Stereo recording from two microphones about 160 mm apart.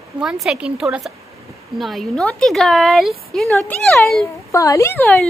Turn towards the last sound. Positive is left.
turn(degrees=10)  # may be behind; listen again after turning